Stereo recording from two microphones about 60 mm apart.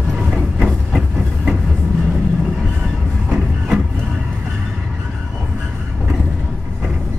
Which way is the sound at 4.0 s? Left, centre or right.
Centre.